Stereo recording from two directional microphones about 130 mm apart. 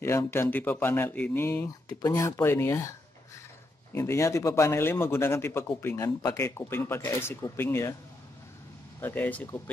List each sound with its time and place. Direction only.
0.0 s a man's voice: 20° left (ahead or behind)
3.9 s a man's voice: 20° left (ahead or behind)
9.0 s speech: 15° left (ahead or behind)